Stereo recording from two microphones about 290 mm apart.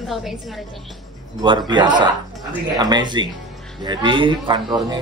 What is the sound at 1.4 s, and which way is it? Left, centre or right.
A woman's voice, centre.